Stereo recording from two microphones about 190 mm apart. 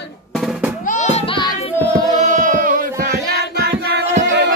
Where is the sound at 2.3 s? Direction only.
40° right (ahead or behind).